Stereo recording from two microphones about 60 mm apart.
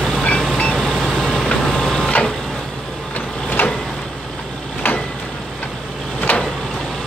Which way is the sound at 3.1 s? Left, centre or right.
Left.